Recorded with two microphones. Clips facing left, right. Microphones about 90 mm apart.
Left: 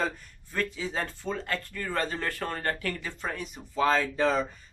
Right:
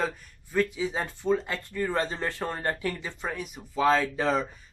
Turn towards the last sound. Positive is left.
turn(degrees=-5)  # may be behind; listen again after turning